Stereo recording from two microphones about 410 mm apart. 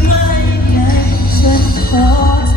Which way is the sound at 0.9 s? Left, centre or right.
Left.